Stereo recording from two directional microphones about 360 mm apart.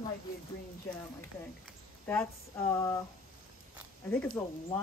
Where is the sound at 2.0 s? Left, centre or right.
Centre.